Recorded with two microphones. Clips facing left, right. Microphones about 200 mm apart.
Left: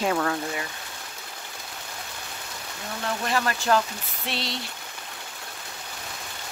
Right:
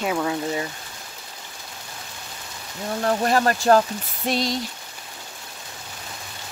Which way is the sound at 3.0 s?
45° right (ahead or behind).